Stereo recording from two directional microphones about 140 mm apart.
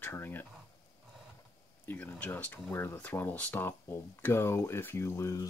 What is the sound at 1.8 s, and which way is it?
Speech, 10° left (ahead or behind).